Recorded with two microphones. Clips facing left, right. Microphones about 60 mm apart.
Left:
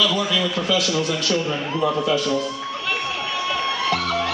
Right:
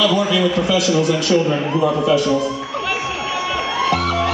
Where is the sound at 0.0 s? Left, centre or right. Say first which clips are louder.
Right 5 dB; centre.